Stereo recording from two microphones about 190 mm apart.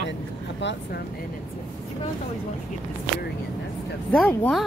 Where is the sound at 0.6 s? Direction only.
65° left (ahead or behind).